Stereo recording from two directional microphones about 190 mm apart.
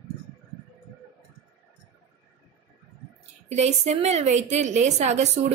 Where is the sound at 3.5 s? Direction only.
35° right (ahead or behind).